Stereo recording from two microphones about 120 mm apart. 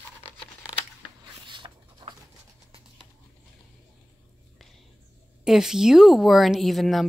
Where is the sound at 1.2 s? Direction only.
40° right (ahead or behind).